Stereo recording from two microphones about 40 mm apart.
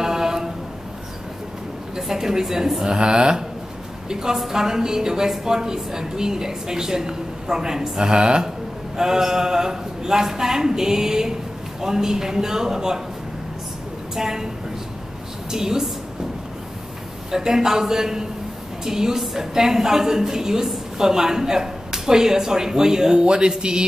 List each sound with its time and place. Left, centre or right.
0.0 s a sound: centre
2.0 s a woman's voice: centre
14.1 s a woman's voice: centre
15.5 s a woman's voice: centre
17.3 s a woman's voice: centre